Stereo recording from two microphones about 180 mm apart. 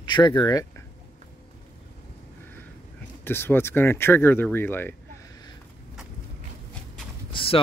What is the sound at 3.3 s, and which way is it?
Speech, 10° left (ahead or behind).